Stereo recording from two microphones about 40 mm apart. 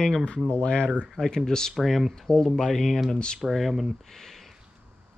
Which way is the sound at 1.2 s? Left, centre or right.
Centre.